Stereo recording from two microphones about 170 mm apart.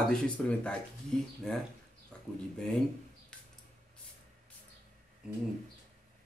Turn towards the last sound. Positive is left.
turn(degrees=-5)  # may be behind; listen again after turning